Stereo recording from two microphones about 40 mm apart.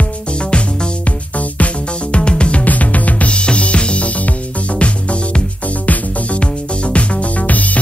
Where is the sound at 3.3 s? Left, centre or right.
Left.